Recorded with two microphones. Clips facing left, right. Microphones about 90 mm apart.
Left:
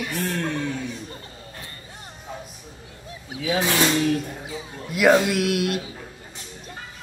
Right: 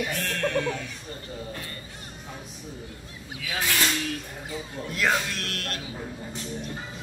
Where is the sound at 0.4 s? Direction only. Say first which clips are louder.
Right 1 dB; 20° left (ahead or behind).